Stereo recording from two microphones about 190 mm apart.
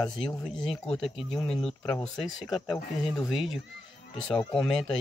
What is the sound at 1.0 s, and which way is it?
Speech, 30° left (ahead or behind).